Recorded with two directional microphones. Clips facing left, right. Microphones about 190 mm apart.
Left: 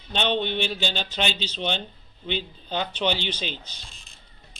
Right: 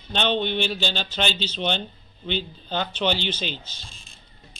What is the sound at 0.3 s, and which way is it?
Speech, 40° right (ahead or behind).